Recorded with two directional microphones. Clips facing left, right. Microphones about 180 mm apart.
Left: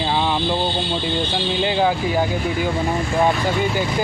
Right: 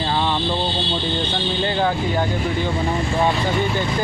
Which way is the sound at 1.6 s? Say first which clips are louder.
Left 2 dB; 5° left (ahead or behind).